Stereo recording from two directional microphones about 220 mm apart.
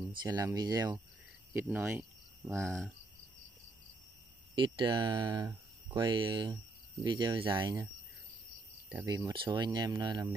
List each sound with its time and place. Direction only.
0.1 s speech: 20° right (ahead or behind)
2.5 s cricket: 5° left (ahead or behind)
4.6 s speech: 20° right (ahead or behind)
8.9 s speech: 15° right (ahead or behind)